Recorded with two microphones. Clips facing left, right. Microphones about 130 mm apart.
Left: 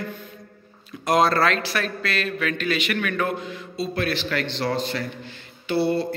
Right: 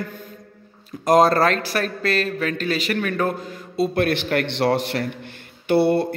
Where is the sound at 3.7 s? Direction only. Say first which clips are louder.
Right 6 dB; 55° right (ahead or behind).